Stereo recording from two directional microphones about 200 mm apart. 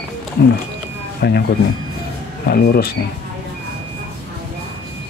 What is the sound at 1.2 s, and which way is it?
Speech, 55° left (ahead or behind).